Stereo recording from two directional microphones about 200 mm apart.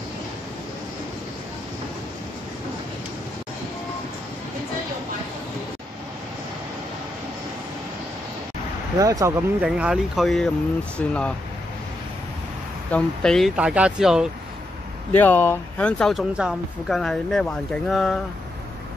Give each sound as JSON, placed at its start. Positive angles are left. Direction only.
{"t": 8.9, "sound": "speech", "side_deg": -15}
{"t": 9.7, "sound": "speech", "side_deg": -5}
{"t": 12.9, "sound": "speech", "side_deg": 5}
{"t": 15.1, "sound": "speech", "side_deg": 10}